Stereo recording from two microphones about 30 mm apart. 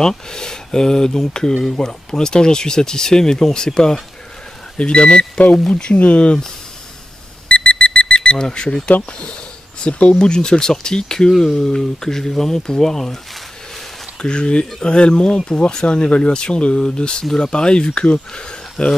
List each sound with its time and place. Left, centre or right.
0.0 s speech: left
4.7 s speech: left
7.4 s a sound: left
9.8 s speech: left; by 13.2 s centre
14.2 s speech: left
15.9 s speech: left